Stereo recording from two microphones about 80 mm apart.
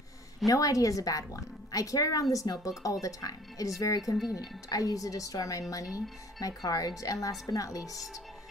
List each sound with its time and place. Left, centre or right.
0.5 s a woman's voice: left